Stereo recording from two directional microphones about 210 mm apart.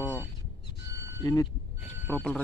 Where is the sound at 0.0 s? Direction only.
20° left (ahead or behind).